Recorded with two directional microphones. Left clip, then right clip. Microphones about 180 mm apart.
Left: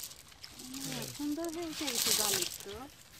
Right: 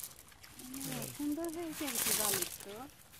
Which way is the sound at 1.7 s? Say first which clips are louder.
Left 5 dB; centre (ahead or behind).